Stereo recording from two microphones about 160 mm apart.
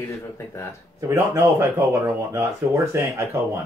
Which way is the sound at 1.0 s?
20° right (ahead or behind).